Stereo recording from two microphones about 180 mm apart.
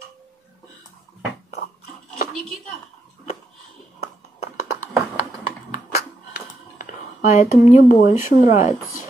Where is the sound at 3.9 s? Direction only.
35° left (ahead or behind).